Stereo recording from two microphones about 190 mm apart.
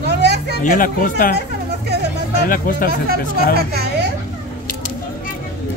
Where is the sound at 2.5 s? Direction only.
45° left (ahead or behind).